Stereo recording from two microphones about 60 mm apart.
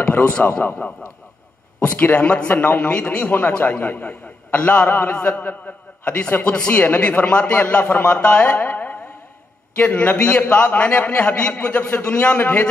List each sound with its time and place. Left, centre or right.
0.0 s a man's voice: left
2.1 s a man's voice: left
3.3 s a man's voice: left